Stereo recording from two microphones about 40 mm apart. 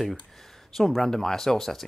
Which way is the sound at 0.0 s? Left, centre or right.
Centre.